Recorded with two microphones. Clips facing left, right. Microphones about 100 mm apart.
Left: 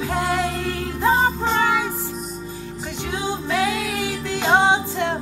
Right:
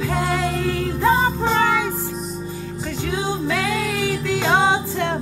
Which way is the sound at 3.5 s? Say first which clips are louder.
Even; 15° left (ahead or behind).